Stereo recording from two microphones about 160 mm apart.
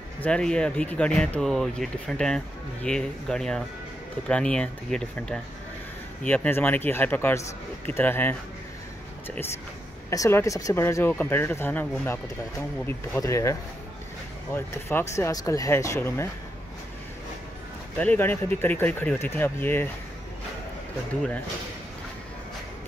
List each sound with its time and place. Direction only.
0.2 s speech: 5° left (ahead or behind)
10.0 s speech: 20° left (ahead or behind)
17.9 s speech: 10° left (ahead or behind)